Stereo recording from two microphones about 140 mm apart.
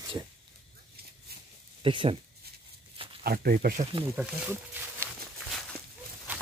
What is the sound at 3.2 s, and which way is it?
Speech, 90° right.